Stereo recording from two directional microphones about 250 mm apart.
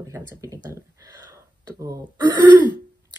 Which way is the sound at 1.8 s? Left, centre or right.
Centre.